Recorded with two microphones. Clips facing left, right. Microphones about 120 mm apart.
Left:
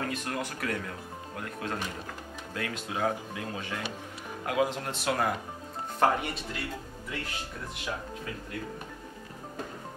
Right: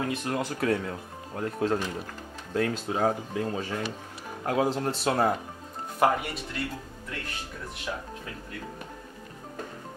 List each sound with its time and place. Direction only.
0.0 s speech: 25° right (ahead or behind)
5.9 s speech: centre (ahead or behind)